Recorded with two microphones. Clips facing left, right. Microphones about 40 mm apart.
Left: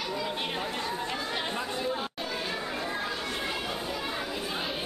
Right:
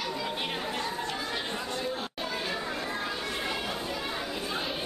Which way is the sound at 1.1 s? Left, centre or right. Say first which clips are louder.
Left 1 dB; centre.